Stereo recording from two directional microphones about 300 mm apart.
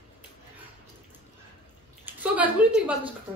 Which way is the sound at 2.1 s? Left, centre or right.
Centre.